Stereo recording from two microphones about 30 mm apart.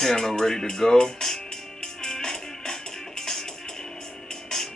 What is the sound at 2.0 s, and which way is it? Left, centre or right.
Music, centre.